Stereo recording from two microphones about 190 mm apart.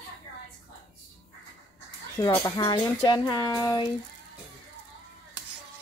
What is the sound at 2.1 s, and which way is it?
Speech, 20° left (ahead or behind).